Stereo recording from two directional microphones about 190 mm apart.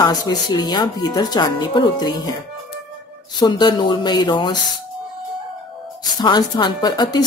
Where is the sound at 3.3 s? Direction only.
25° left (ahead or behind).